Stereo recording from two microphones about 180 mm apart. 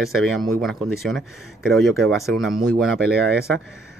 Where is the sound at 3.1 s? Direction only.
65° right (ahead or behind).